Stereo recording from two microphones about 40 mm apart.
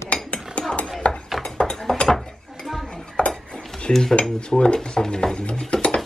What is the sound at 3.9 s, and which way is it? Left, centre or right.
Dishes, left.